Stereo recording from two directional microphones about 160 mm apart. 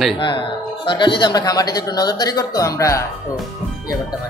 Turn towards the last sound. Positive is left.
turn(degrees=20)  # may be behind; listen again after turning